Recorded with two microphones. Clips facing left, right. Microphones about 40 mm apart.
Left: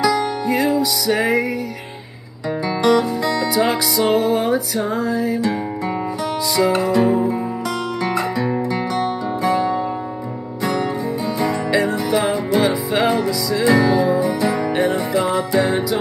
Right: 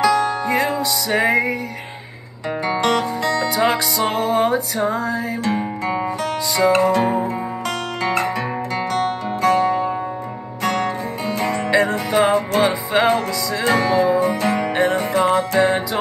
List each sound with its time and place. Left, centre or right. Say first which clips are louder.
0.0 s music: right 1 dB; right
2.6 s music: left 3 dB; right